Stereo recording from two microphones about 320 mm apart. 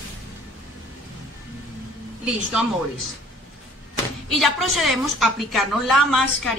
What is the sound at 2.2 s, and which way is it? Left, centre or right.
Speech, centre.